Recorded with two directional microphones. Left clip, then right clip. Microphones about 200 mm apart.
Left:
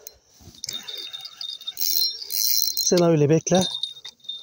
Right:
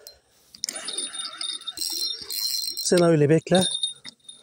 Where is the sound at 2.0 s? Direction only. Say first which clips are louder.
Left 3 dB; 20° right (ahead or behind).